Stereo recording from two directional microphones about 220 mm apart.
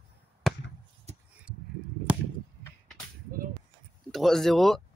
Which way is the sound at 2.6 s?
Centre (ahead or behind).